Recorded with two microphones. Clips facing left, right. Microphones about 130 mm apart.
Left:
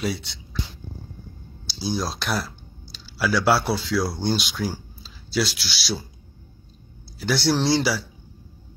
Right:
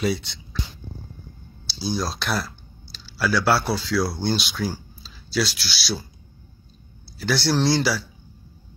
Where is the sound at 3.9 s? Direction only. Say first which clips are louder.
Right 1 dB; 5° right (ahead or behind).